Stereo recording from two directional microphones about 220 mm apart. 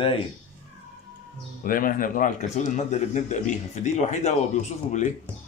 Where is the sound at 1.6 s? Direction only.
40° left (ahead or behind).